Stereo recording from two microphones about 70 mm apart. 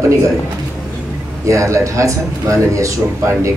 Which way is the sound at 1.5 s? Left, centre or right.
Right.